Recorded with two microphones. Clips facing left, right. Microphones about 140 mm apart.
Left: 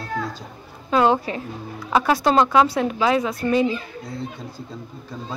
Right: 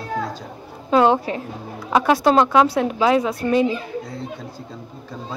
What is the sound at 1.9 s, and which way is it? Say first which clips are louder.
Speech: right 2 dB; centre (ahead or behind).